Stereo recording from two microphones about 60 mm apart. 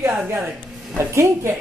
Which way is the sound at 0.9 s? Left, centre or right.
Right.